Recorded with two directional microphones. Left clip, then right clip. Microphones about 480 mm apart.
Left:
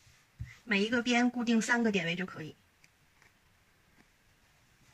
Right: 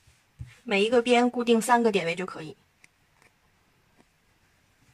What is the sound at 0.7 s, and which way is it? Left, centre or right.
Speech, centre.